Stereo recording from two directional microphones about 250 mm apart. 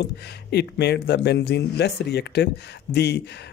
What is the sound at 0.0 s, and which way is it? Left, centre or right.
Speech, left.